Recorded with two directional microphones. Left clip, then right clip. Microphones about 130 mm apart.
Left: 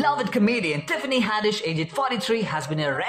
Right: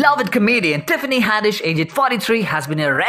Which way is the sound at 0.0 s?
35° right (ahead or behind).